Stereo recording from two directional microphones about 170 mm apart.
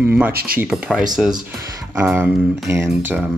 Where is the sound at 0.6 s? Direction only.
5° right (ahead or behind).